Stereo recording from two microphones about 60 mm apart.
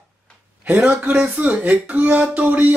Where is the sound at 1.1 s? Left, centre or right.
Right.